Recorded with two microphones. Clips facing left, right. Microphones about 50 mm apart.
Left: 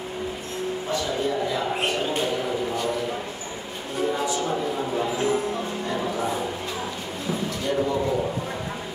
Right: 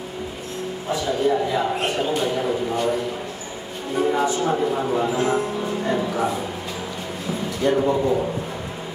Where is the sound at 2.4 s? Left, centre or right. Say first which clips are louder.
Right 4 dB; centre.